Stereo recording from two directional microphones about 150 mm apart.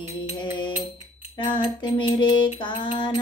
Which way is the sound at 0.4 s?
30° left (ahead or behind).